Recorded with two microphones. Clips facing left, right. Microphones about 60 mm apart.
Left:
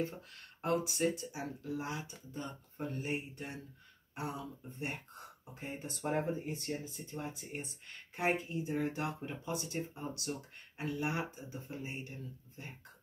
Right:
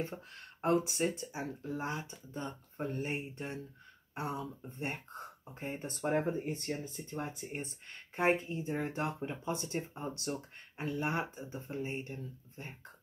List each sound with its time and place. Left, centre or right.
0.0 s speech: right